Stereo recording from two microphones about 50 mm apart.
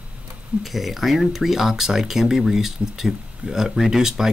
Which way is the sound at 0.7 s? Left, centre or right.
Centre.